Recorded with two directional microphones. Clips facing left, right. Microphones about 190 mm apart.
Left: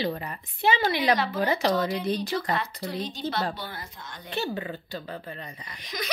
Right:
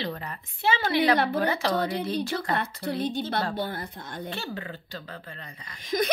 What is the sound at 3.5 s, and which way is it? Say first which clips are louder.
Speech: right 6 dB; 55° right (ahead or behind).